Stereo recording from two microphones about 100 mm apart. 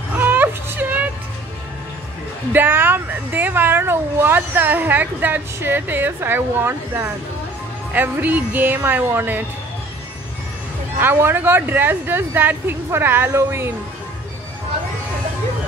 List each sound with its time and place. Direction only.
0.1 s music: 20° right (ahead or behind)
2.5 s speech: 20° right (ahead or behind)
11.0 s speech: 20° right (ahead or behind)